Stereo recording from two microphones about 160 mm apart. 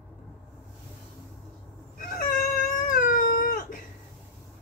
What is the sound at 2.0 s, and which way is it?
Cat, 60° left (ahead or behind).